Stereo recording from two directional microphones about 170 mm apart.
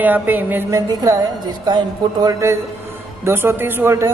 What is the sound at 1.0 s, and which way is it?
A man's voice, 20° right (ahead or behind).